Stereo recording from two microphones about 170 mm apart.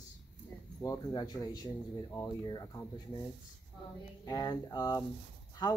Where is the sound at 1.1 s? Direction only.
25° left (ahead or behind).